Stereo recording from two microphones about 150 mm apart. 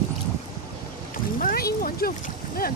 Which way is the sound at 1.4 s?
85° left.